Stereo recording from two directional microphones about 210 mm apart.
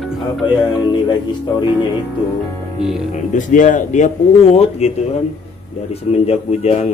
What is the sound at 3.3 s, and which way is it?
Speech, 35° left (ahead or behind).